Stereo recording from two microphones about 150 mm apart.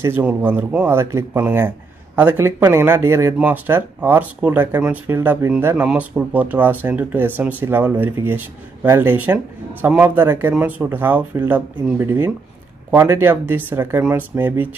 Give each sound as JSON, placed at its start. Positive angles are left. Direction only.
{"t": 0.0, "sound": "speech", "side_deg": -15}